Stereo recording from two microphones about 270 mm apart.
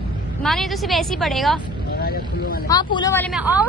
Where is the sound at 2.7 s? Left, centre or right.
Centre.